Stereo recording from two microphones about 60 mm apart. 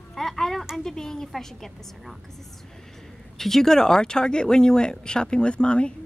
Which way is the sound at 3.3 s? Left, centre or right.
Centre.